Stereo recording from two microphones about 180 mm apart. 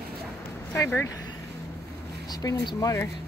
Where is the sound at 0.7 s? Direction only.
15° left (ahead or behind).